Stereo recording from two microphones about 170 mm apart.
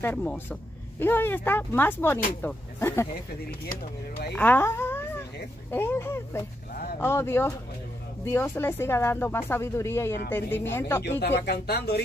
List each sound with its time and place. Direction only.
0.0 s speech: 10° left (ahead or behind)
4.3 s speech: 10° left (ahead or behind)
11.1 s speech: 80° left